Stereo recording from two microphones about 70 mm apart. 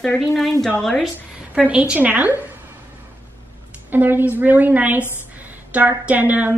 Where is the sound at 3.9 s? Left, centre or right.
Right.